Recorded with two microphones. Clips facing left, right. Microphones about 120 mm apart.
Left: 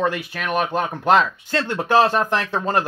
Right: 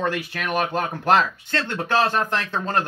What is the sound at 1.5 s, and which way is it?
Speech, 15° left (ahead or behind).